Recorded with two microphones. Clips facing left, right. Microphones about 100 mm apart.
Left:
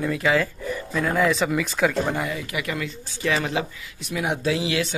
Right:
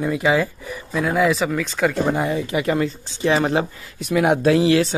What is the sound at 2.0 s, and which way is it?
Speech, 25° right (ahead or behind).